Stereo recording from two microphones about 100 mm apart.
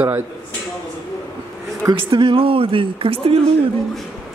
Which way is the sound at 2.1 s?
65° right (ahead or behind).